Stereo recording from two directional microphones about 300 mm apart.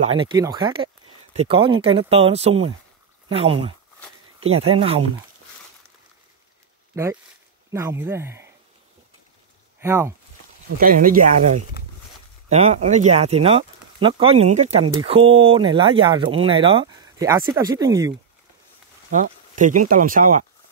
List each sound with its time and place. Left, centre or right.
0.0 s speech: centre
7.7 s speech: centre
9.8 s speech: centre
10.8 s speech: right; by 18.1 s centre
19.0 s speech: right